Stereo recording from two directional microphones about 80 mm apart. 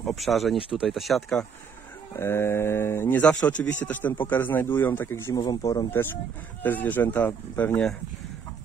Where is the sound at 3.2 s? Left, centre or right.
Centre.